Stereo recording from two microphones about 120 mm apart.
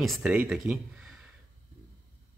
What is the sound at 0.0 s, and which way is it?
Speech, 5° right (ahead or behind).